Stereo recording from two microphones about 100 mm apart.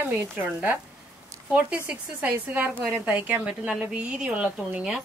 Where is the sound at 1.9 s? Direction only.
15° right (ahead or behind).